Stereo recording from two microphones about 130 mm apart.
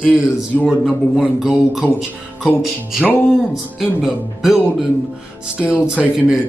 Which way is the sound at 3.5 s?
5° right (ahead or behind).